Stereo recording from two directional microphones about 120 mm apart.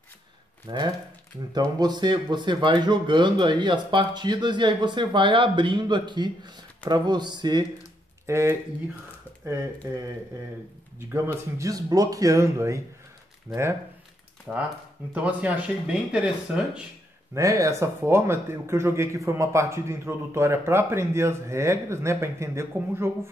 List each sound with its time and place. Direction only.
0.7 s speech: 40° right (ahead or behind)
8.3 s speech: 25° right (ahead or behind)
14.5 s speech: 10° right (ahead or behind)
17.3 s speech: 25° right (ahead or behind)